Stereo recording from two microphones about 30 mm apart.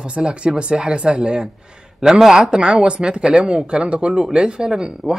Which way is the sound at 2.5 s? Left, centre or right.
Right.